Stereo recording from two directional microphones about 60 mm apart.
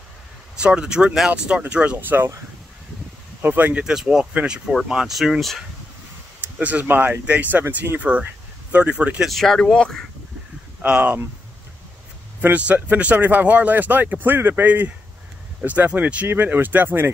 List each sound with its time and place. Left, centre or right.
0.6 s speech: centre
2.0 s speech: right
3.4 s speech: right
3.8 s speech: centre
6.6 s speech: right
9.3 s speech: centre
10.9 s speech: right
12.4 s speech: right
16.3 s speech: right